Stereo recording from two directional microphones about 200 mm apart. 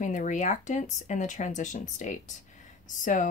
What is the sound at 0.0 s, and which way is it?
Speech, 40° left (ahead or behind).